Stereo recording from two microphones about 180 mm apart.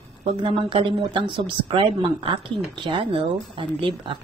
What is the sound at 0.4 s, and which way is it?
Speech, 30° right (ahead or behind).